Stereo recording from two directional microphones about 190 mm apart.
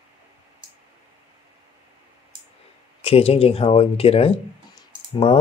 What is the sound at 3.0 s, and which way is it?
Speech, 30° left (ahead or behind).